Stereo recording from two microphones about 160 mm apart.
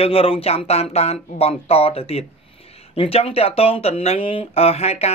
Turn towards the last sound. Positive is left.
turn(degrees=40)  # may be behind; listen again after turning